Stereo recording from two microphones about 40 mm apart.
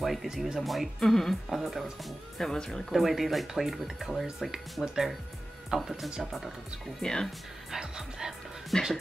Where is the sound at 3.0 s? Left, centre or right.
Centre.